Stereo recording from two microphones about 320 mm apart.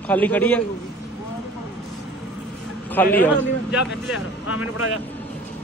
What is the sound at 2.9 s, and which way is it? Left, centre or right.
A man's voice, centre.